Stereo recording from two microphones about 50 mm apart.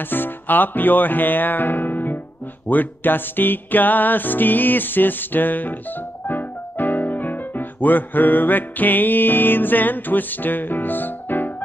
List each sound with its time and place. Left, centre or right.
0.0 s music: left
6.2 s speech: left